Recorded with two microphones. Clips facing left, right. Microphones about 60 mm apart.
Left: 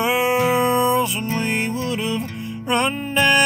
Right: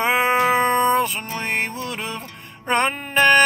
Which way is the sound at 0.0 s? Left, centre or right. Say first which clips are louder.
Even; right.